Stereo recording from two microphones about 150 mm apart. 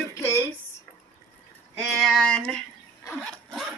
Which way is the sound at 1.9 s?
5° left (ahead or behind).